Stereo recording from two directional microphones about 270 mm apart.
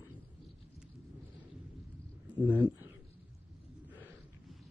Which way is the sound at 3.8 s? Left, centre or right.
Centre.